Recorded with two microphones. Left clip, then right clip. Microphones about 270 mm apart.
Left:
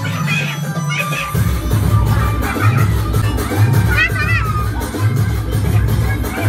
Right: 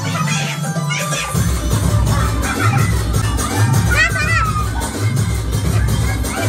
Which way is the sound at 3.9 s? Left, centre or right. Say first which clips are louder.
Right 1 dB; right.